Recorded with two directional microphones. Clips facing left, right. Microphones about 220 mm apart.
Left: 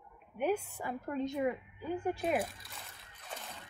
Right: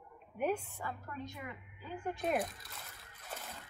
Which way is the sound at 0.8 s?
25° left (ahead or behind).